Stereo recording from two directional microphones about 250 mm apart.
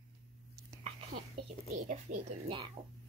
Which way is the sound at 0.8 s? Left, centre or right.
Right.